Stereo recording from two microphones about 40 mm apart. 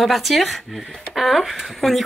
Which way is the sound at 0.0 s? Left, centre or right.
Centre.